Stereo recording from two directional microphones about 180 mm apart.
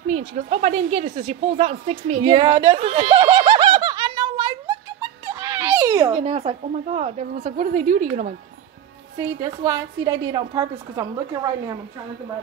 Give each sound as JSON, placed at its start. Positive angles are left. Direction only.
{"t": 0.1, "sound": "a woman's voice", "side_deg": -35}
{"t": 3.3, "sound": "snicker", "side_deg": -20}
{"t": 3.5, "sound": "giggle", "side_deg": -25}
{"t": 5.8, "sound": "a sound", "side_deg": -15}
{"t": 6.1, "sound": "a woman's voice", "side_deg": -35}
{"t": 9.4, "sound": "a woman's voice", "side_deg": -20}